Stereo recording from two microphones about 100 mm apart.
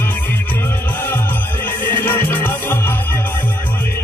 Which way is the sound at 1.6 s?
20° left (ahead or behind).